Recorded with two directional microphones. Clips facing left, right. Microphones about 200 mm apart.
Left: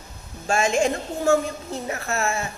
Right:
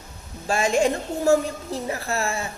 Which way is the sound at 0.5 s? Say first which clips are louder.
Even; 35° right (ahead or behind).